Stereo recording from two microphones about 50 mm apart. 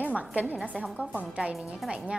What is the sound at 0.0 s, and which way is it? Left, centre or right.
A woman's voice, right.